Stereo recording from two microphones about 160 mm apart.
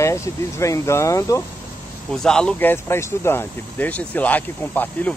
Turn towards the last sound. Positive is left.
turn(degrees=10)  # may be behind; listen again after turning